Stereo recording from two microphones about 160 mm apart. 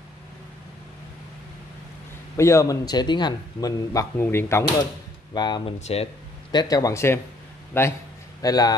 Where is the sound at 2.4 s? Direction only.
20° left (ahead or behind).